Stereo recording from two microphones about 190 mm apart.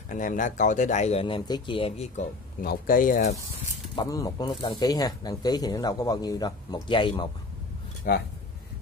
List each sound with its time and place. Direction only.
0.1 s speech: 45° left (ahead or behind)
2.6 s speech: 50° left (ahead or behind)
3.9 s speech: 20° left (ahead or behind)
8.1 s speech: 45° left (ahead or behind)